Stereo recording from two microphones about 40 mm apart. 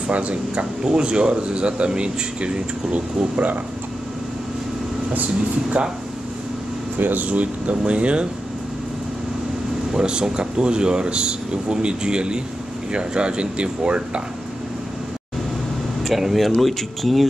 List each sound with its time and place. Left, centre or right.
0.1 s speech: right
7.0 s speech: right
9.9 s speech: right
16.2 s speech: centre